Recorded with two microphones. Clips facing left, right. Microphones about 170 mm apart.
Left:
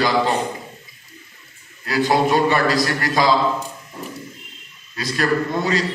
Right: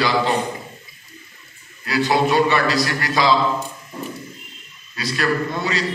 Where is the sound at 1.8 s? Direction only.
45° left (ahead or behind).